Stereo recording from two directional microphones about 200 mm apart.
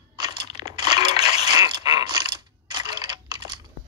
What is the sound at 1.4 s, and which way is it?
Mechanisms, 20° right (ahead or behind).